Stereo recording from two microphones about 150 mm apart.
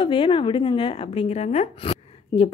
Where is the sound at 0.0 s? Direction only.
35° left (ahead or behind).